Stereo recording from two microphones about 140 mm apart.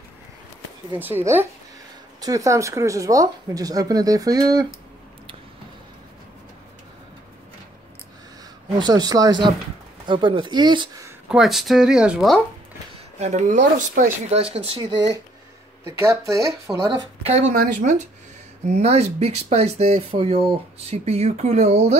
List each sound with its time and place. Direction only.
0.9 s speech: 15° right (ahead or behind)
8.7 s speech: 30° right (ahead or behind)
11.2 s speech: 5° right (ahead or behind)
13.2 s speech: 60° right (ahead or behind)
14.3 s speech: 45° right (ahead or behind)
15.8 s speech: 20° right (ahead or behind)
17.2 s speech: 50° right (ahead or behind)
17.6 s speech: 65° right (ahead or behind)
18.8 s speech: 50° right (ahead or behind)